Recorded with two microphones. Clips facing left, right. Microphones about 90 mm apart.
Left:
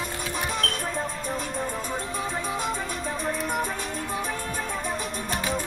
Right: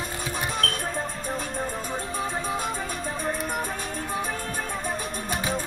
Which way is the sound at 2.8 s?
40° right (ahead or behind).